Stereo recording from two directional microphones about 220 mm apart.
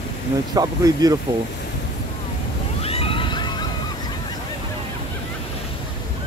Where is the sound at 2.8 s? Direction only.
25° left (ahead or behind).